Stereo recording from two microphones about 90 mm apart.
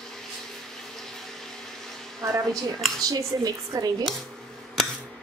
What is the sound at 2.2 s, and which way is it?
Speech, 35° right (ahead or behind).